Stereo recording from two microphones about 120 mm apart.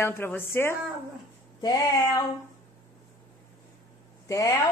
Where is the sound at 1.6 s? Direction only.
30° left (ahead or behind).